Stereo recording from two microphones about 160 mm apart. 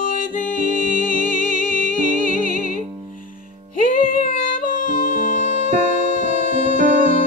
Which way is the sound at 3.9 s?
60° left (ahead or behind).